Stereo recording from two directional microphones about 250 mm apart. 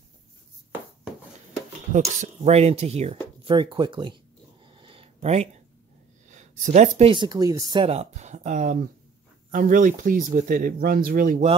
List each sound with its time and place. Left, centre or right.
1.9 s speech: right
4.6 s a sound: right
6.2 s speech: right